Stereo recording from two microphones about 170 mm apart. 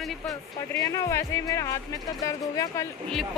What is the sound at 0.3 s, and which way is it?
Speech, 20° left (ahead or behind).